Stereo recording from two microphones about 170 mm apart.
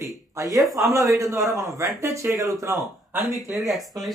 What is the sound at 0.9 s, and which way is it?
Speech, 20° right (ahead or behind).